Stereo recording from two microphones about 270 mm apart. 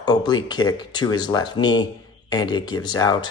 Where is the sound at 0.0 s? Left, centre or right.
Centre.